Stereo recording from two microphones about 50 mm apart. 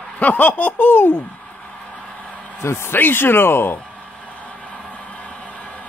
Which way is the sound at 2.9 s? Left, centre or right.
Left.